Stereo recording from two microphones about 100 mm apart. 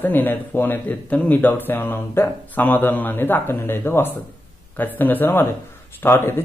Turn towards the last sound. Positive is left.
turn(degrees=25)  # may be behind; listen again after turning